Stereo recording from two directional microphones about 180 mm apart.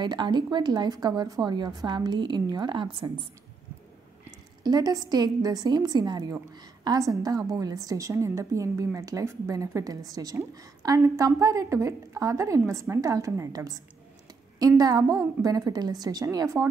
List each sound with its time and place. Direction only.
0.0 s a woman's voice: 25° right (ahead or behind)
4.6 s a woman's voice: 20° right (ahead or behind)